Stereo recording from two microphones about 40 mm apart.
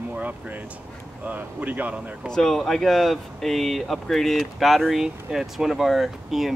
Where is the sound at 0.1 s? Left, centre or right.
Right.